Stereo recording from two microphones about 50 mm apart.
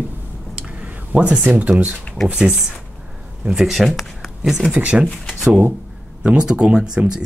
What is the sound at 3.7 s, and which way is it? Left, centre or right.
Speech, centre.